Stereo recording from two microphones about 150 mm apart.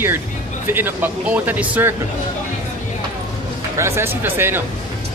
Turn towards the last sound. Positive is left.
turn(degrees=-15)  # may be behind; listen again after turning